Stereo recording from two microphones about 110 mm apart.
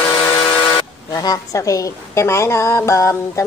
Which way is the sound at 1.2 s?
35° left (ahead or behind).